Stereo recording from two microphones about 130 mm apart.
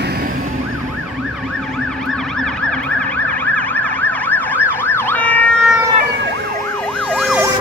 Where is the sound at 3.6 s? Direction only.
10° left (ahead or behind).